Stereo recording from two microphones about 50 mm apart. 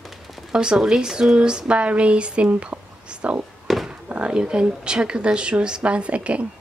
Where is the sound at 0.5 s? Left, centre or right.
Centre.